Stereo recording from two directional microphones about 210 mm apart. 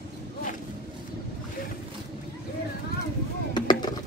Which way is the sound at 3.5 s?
20° left (ahead or behind).